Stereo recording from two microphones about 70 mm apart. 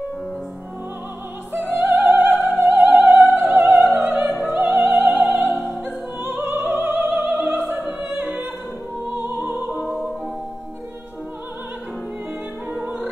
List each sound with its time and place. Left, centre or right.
1.6 s opera: right
4.4 s music: right
6.2 s opera: right
7.2 s music: right
8.1 s opera: right
9.1 s music: right